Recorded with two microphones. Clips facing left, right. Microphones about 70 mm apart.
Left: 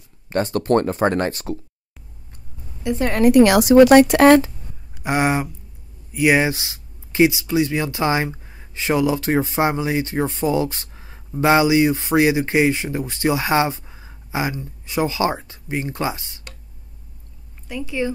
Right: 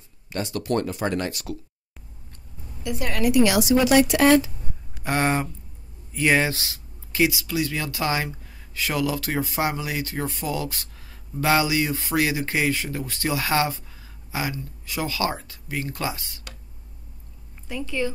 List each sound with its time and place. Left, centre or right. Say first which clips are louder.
0.3 s speech: left 8 dB; left
3.0 s speech: left 8 dB; left
3.3 s speech: left 8 dB; left
5.0 s speech: left 3 dB; centre
17.8 s speech: left 3 dB; centre